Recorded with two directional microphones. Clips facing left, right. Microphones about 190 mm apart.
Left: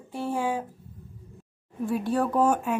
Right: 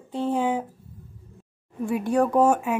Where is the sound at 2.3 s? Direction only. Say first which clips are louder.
Right 3 dB; 10° right (ahead or behind).